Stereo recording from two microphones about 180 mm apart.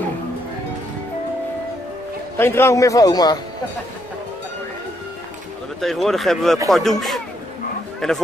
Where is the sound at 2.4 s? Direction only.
15° left (ahead or behind).